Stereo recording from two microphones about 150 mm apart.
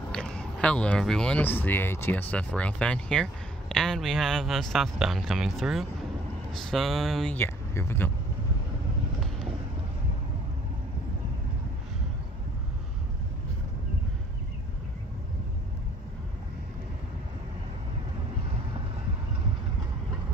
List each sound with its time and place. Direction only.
0.1 s speech: 5° left (ahead or behind)
7.3 s speech: 15° left (ahead or behind)